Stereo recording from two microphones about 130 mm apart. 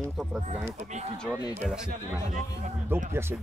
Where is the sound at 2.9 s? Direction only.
15° right (ahead or behind).